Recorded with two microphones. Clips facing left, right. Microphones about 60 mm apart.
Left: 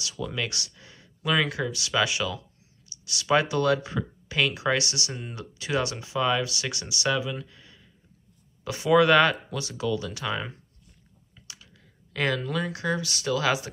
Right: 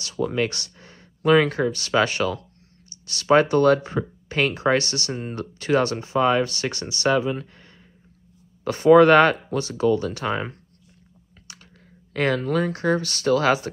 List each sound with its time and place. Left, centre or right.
0.0 s speech: right
11.5 s chewing: right
12.1 s speech: right